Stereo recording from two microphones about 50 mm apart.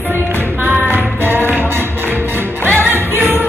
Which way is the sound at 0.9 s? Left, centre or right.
Right.